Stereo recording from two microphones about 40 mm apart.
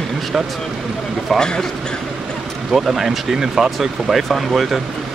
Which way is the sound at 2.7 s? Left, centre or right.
Centre.